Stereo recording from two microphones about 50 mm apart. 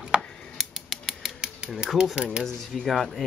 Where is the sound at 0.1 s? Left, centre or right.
Centre.